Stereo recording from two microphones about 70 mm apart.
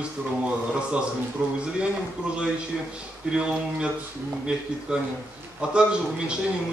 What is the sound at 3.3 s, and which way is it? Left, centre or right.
Speech, centre.